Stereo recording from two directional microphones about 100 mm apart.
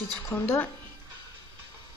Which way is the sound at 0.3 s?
25° left (ahead or behind).